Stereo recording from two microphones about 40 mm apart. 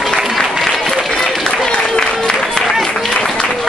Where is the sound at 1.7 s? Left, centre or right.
Left.